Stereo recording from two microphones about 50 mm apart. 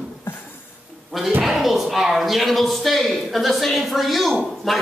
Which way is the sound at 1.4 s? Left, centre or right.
Centre.